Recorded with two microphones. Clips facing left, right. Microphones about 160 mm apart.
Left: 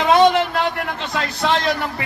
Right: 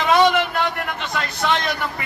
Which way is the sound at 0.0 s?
30° left (ahead or behind).